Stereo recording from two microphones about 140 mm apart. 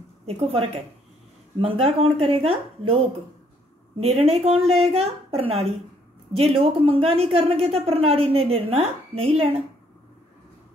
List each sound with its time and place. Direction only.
0.3 s speech: 45° right (ahead or behind)